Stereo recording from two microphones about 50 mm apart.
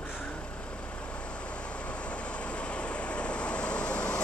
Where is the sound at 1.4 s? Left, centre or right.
Left.